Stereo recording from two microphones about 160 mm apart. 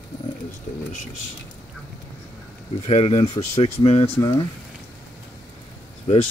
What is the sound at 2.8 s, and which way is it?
Speech, 40° left (ahead or behind).